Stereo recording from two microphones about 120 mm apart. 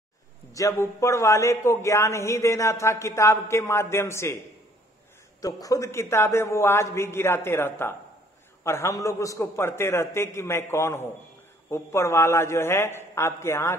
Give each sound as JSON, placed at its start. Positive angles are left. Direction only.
{"t": 0.5, "sound": "a man's voice", "side_deg": 25}
{"t": 5.4, "sound": "a man's voice", "side_deg": 30}